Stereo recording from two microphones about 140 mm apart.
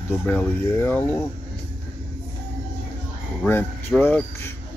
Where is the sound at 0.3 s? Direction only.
10° left (ahead or behind).